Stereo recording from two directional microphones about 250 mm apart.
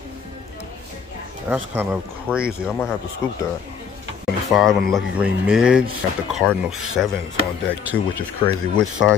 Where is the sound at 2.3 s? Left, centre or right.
Centre.